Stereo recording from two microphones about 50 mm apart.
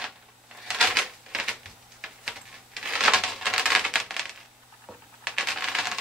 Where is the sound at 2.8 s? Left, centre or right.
Centre.